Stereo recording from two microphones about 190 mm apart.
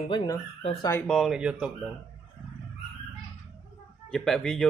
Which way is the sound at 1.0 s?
Centre (ahead or behind).